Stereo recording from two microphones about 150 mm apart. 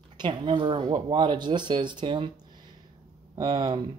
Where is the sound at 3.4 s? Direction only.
30° right (ahead or behind).